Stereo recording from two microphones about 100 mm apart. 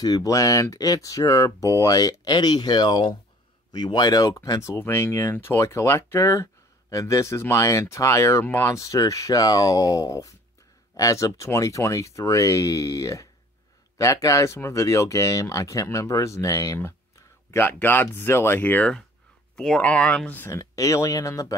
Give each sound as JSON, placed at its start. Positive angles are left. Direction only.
{"t": 0.0, "sound": "speech", "side_deg": 35}
{"t": 20.5, "sound": "speech", "side_deg": 35}